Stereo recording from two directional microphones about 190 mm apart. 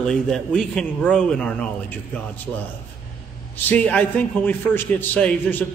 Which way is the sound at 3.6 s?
5° left (ahead or behind).